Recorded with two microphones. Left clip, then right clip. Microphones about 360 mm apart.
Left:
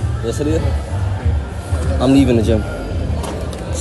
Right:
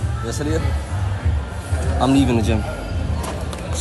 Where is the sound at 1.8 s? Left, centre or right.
Centre.